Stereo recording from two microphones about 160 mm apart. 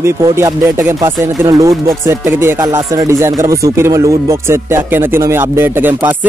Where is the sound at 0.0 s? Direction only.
15° right (ahead or behind).